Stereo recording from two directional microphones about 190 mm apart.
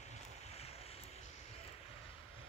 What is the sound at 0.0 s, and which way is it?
Vehicle, 35° left (ahead or behind).